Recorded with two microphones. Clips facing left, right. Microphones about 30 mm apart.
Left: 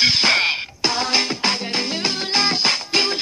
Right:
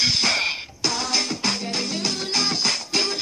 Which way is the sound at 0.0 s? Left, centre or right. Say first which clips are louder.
Left 5 dB; left.